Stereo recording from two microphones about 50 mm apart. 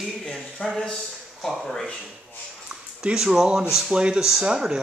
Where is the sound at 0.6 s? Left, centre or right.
Left.